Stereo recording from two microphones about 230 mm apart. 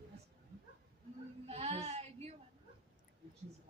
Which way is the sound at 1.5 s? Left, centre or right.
Right.